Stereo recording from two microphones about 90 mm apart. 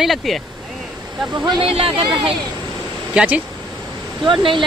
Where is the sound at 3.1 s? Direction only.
15° right (ahead or behind).